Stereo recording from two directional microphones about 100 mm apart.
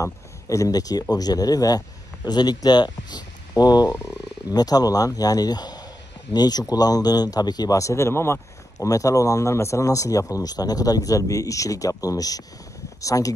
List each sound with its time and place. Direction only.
0.0 s speech: 30° left (ahead or behind)